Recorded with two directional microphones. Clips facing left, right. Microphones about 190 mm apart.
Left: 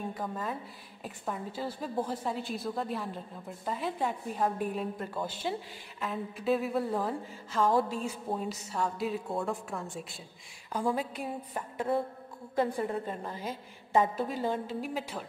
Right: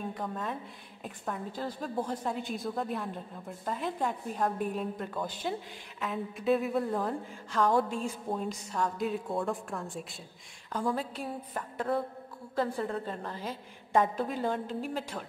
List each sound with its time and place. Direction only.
0.1 s a woman's voice: centre (ahead or behind)
10.7 s a woman's voice: 10° left (ahead or behind)